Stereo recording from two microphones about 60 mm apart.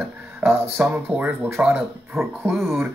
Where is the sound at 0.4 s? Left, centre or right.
Right.